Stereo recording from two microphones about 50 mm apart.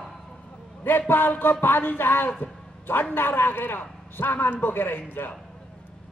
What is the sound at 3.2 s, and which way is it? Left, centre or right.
A man's voice, left.